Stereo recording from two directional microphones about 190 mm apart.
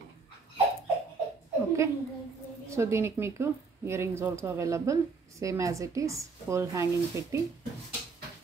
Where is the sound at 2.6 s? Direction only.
15° right (ahead or behind).